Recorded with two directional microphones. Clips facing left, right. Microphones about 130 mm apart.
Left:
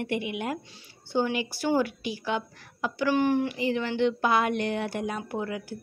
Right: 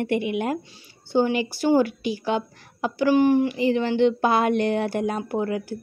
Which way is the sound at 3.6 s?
30° right (ahead or behind).